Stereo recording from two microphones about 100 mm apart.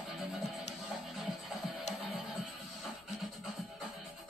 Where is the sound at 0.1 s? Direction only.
Centre (ahead or behind).